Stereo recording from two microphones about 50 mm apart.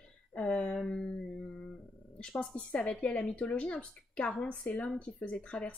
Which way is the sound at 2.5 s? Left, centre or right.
Left.